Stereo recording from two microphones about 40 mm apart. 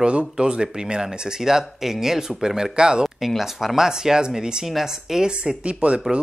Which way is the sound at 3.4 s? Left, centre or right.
Centre.